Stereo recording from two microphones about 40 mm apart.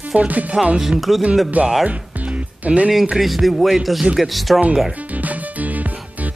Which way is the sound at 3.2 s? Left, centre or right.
Centre.